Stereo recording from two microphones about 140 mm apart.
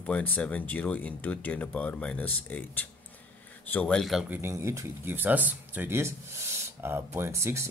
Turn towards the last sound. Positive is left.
turn(degrees=-20)  # may be behind; listen again after turning